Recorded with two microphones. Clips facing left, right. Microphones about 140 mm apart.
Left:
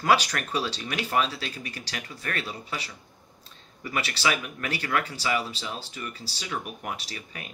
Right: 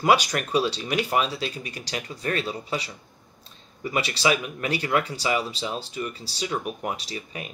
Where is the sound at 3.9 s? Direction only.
20° right (ahead or behind).